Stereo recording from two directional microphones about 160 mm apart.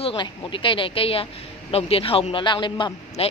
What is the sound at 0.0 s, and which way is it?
Speech, 30° left (ahead or behind).